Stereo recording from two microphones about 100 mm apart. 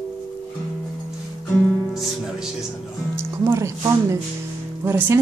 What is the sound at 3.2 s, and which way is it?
Speech, 25° right (ahead or behind).